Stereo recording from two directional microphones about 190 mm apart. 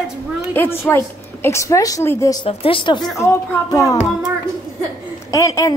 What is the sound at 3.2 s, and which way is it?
Speech, 15° left (ahead or behind).